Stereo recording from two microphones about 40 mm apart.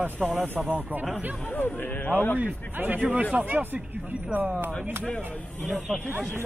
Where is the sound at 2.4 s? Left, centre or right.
Right.